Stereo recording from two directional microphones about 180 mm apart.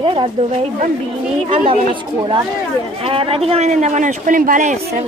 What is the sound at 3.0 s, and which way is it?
A man's voice, 30° right (ahead or behind).